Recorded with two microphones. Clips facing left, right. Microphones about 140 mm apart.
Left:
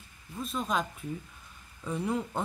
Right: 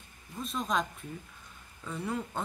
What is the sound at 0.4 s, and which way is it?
Speech, centre (ahead or behind).